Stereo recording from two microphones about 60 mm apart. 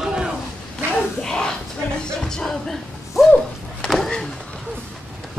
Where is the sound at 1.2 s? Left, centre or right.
Centre.